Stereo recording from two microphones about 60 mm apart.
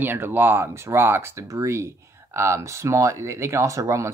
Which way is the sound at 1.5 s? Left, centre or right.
Right.